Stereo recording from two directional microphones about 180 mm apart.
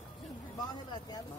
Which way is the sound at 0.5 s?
20° left (ahead or behind).